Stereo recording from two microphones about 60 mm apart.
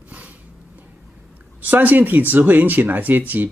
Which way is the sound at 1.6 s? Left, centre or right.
Right.